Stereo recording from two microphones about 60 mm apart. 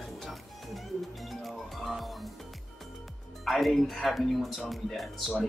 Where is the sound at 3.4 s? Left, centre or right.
Centre.